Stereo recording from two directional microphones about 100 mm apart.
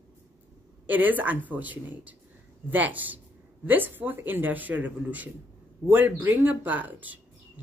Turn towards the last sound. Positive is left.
turn(degrees=-15)  # may be behind; listen again after turning